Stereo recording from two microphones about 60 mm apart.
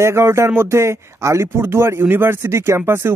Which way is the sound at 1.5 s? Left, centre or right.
Right.